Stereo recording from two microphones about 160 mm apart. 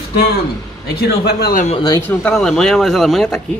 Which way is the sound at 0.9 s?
75° left (ahead or behind).